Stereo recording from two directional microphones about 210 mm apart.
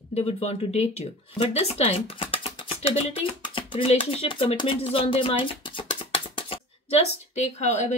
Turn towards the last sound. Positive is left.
turn(degrees=30)  # may be behind; listen again after turning